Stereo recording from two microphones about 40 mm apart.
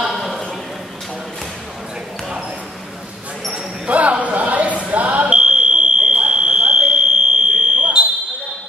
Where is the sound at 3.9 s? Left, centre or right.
Right.